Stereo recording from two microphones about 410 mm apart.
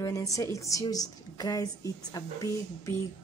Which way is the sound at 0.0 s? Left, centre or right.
Centre.